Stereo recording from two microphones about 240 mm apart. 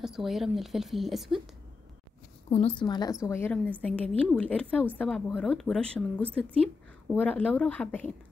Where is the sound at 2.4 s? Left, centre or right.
Left; by 8.0 s centre.